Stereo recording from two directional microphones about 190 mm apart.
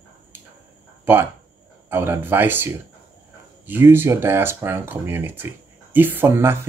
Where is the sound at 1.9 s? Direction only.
10° right (ahead or behind).